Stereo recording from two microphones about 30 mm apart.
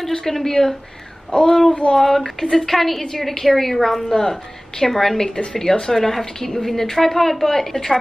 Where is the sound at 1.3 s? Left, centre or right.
Left.